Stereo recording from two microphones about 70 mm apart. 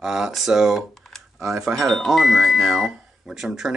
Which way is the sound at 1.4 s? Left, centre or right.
Right.